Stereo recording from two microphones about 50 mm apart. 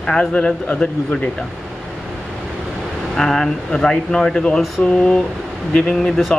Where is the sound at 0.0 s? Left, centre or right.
Centre.